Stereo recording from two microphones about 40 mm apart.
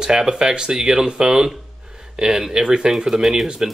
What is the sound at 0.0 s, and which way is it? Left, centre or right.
Speech, centre.